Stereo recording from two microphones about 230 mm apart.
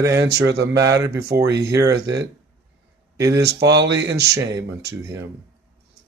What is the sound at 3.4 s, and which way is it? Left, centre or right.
Speech, right.